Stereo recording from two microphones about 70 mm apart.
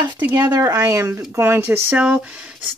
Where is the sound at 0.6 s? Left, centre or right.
Right.